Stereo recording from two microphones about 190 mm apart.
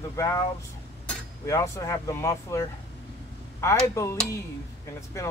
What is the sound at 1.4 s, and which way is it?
Speech, 15° left (ahead or behind).